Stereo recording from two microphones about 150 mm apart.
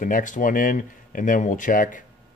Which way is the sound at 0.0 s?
60° left (ahead or behind).